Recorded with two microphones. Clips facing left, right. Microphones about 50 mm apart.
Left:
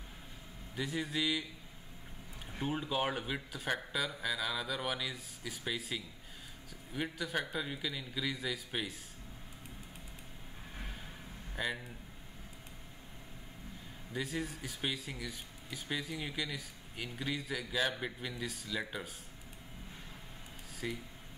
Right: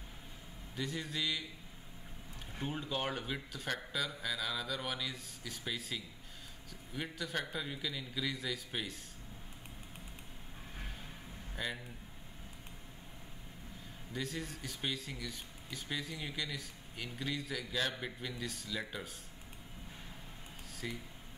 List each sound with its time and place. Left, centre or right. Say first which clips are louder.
0.7 s speech: left 3 dB; centre
2.6 s speech: left 3 dB; centre
11.5 s speech: left 3 dB; centre
14.1 s speech: left 3 dB; centre
20.8 s speech: left 3 dB; centre